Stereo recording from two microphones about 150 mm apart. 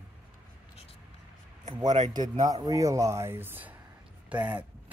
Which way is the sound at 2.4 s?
25° right (ahead or behind).